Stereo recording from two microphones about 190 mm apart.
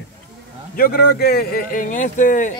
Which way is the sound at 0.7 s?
50° left (ahead or behind).